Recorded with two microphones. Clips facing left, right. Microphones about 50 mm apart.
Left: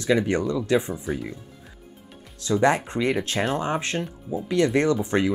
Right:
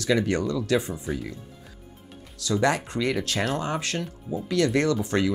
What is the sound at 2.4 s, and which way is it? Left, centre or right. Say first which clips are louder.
Speech: left 3 dB; left.